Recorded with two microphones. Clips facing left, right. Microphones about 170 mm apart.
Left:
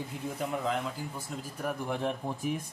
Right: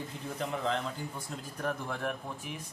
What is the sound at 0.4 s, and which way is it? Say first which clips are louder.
A man's voice: left 1 dB; 10° left (ahead or behind).